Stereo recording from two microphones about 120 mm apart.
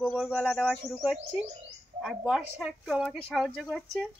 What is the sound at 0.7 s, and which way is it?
Speech, centre (ahead or behind).